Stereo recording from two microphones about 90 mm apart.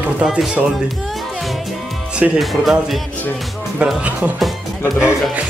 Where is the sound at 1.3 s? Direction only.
Centre (ahead or behind).